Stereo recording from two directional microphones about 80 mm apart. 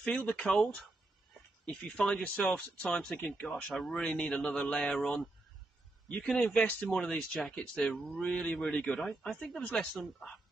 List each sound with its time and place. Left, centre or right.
0.0 s speech: centre
1.7 s speech: centre
3.2 s speech: left
3.4 s speech: centre
6.2 s speech: centre